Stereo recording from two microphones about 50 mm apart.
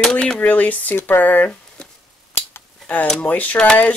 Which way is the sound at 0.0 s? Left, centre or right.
Centre.